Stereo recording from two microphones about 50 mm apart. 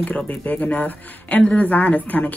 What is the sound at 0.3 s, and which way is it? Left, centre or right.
Speech, left.